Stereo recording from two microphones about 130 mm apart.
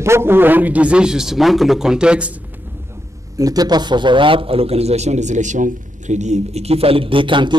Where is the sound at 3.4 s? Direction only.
30° right (ahead or behind).